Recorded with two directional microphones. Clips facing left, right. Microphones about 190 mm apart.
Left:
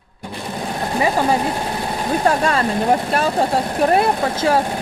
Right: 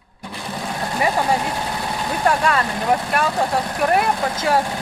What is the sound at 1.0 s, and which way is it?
Vehicle, 25° left (ahead or behind).